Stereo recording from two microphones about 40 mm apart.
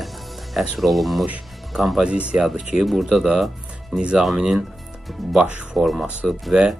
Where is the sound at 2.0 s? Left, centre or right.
Right.